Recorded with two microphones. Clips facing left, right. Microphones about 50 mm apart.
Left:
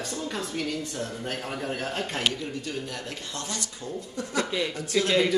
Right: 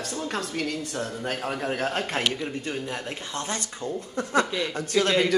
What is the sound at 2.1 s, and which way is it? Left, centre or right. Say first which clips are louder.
Speech: right 2 dB; right.